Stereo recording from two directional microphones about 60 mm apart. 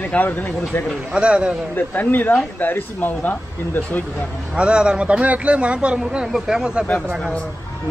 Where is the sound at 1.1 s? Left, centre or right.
Centre.